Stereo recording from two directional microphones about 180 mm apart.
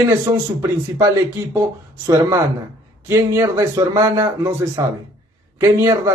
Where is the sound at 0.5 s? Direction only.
15° right (ahead or behind).